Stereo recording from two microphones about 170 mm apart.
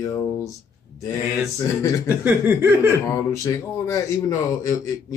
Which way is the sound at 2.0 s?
15° right (ahead or behind).